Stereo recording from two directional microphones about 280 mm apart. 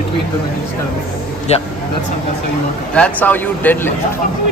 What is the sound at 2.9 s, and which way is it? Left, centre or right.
A man's voice, centre.